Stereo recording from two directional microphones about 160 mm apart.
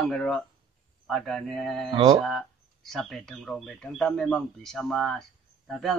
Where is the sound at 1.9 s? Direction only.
35° right (ahead or behind).